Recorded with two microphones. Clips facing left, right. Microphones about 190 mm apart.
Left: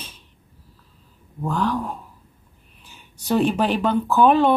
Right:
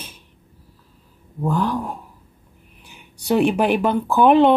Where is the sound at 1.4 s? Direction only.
15° right (ahead or behind).